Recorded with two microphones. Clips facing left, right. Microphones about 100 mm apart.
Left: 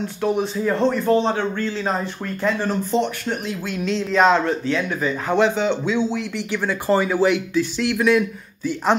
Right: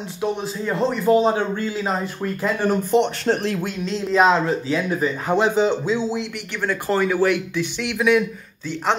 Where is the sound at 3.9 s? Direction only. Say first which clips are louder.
Left 1 dB; centre (ahead or behind).